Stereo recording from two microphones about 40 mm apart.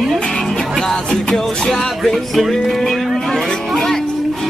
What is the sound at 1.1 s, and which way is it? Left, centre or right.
Music, centre.